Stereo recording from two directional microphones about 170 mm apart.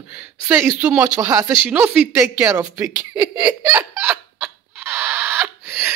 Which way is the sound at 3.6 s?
10° right (ahead or behind).